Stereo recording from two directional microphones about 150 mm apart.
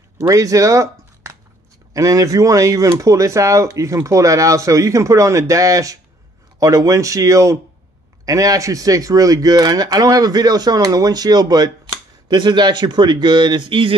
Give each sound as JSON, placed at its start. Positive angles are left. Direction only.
{"t": 0.2, "sound": "a man's voice", "side_deg": -20}